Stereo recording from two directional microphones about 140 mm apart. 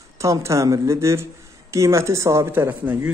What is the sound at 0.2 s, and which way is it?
A man's voice, 20° right (ahead or behind).